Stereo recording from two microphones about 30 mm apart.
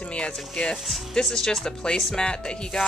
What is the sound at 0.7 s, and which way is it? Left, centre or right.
Speech, centre.